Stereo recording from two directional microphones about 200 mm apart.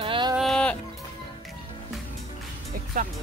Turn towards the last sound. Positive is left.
turn(degrees=-45)  # may be behind; listen again after turning